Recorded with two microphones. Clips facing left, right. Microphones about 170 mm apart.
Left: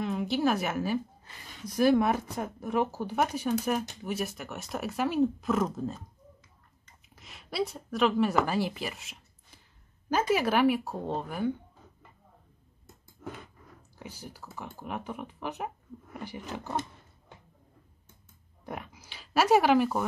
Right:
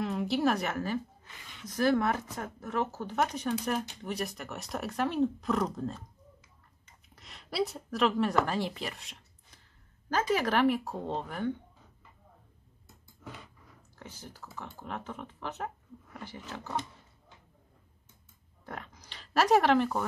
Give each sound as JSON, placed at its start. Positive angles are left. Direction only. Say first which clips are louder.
{"t": 0.0, "sound": "a woman's voice", "louder": "left 1 dB", "side_deg": 0}
{"t": 1.2, "sound": "a sound", "louder": "left 4 dB", "side_deg": 35}
{"t": 1.7, "sound": "speech", "louder": "left 3 dB", "side_deg": 10}
{"t": 12.8, "sound": "a sound", "louder": "left 6 dB", "side_deg": 50}
{"t": 13.9, "sound": "speech", "louder": "left 3 dB", "side_deg": 10}
{"t": 18.7, "sound": "speech", "louder": "left 3 dB", "side_deg": 10}